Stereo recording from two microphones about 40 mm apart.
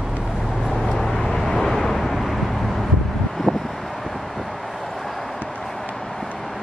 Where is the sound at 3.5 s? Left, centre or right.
Right.